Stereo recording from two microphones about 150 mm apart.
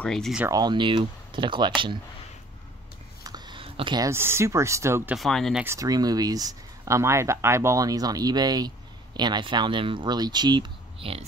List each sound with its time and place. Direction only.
0.0 s speech: 5° left (ahead or behind)
0.5 s speech: 30° right (ahead or behind)
3.3 s a sound: 30° right (ahead or behind)
4.1 s speech: 15° right (ahead or behind)
5.1 s speech: centre (ahead or behind)
5.6 s speech: 20° right (ahead or behind); by 11.2 s 40° right (ahead or behind)